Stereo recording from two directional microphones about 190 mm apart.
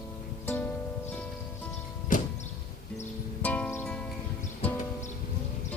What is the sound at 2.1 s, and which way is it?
Music, 45° left (ahead or behind).